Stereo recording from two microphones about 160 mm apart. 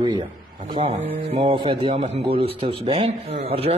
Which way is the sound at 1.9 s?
45° right (ahead or behind).